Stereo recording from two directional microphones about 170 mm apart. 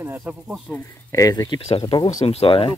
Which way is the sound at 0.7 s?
15° left (ahead or behind).